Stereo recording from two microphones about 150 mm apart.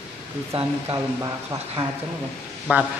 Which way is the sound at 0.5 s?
40° right (ahead or behind).